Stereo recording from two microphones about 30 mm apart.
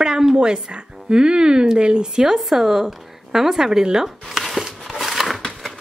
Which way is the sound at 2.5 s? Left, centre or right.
Centre.